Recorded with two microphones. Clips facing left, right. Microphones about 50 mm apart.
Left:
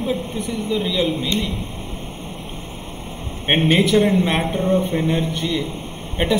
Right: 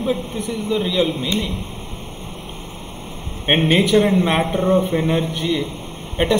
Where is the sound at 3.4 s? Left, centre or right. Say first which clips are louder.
Even; centre.